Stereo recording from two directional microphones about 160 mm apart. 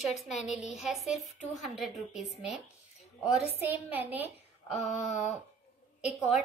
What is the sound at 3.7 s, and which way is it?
Speech, 10° right (ahead or behind).